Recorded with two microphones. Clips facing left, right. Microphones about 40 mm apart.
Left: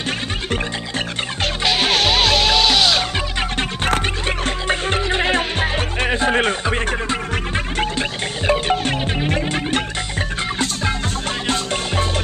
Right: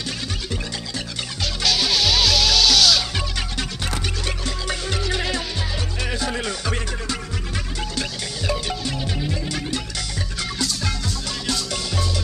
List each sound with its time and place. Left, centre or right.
0.5 s music: left
7.8 s music: left
11.4 s music: left